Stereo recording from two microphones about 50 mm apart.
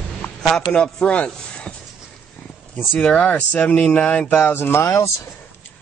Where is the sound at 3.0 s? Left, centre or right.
Left.